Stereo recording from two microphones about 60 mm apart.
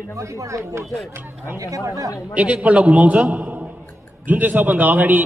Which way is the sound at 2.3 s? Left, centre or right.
Right.